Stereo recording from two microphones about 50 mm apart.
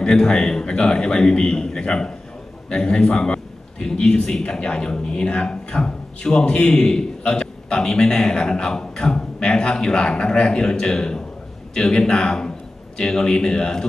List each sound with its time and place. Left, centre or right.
0.0 s a man's voice: centre